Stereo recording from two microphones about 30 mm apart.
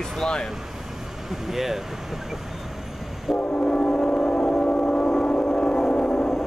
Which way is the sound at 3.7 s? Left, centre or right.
Left.